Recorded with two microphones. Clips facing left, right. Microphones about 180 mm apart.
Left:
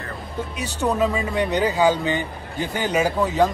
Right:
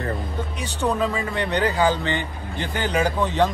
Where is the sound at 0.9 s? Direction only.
5° left (ahead or behind).